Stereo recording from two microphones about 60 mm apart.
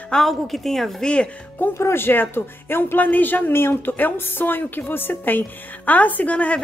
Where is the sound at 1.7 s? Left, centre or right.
Left.